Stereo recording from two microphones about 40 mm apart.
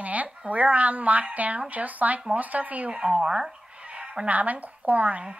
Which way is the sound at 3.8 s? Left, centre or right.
Right.